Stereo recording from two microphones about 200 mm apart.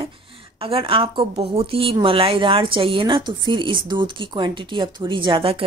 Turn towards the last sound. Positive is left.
turn(degrees=-25)  # may be behind; listen again after turning